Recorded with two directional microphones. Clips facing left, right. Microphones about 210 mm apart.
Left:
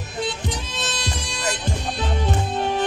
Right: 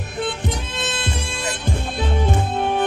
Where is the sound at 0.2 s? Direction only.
55° right (ahead or behind).